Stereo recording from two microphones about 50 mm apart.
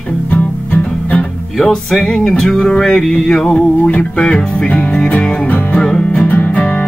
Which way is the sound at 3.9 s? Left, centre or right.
Left.